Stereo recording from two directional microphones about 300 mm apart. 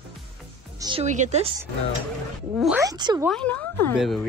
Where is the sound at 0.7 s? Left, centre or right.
Centre.